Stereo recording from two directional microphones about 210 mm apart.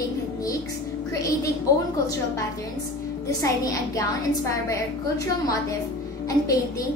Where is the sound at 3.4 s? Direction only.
15° left (ahead or behind).